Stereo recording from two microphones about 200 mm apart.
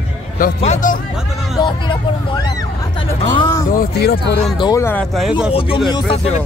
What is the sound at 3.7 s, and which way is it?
Speech, 50° left (ahead or behind).